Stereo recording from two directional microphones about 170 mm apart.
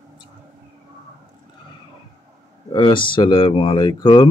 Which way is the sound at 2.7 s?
30° left (ahead or behind).